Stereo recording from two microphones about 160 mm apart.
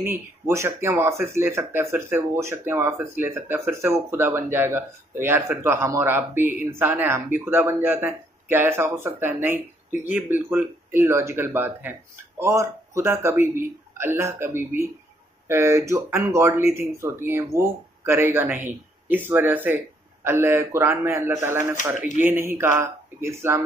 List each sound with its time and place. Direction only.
0.0 s speech: 15° right (ahead or behind)